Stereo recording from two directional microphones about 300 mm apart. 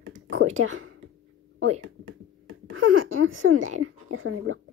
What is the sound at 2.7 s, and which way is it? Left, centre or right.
Speech, right.